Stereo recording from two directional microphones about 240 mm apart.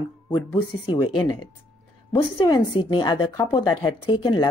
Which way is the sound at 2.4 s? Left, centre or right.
Centre.